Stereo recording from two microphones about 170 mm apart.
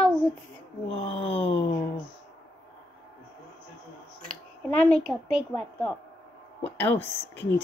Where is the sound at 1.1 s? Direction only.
35° left (ahead or behind).